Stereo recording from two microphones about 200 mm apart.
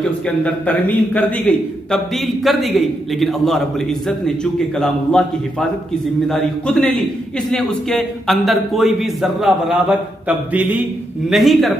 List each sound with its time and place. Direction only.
0.4 s a man's voice: 10° left (ahead or behind)